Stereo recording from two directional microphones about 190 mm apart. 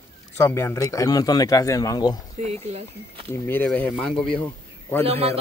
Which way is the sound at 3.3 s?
10° left (ahead or behind).